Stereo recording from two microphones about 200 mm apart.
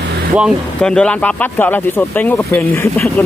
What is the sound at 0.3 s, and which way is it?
Speech, centre (ahead or behind).